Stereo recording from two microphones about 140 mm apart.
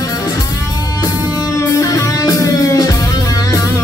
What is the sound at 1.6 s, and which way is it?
Music, 25° left (ahead or behind).